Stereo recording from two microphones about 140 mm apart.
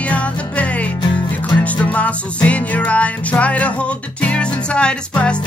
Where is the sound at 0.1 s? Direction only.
10° left (ahead or behind).